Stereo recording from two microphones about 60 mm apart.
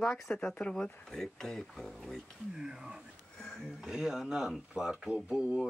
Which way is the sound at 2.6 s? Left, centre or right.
Centre.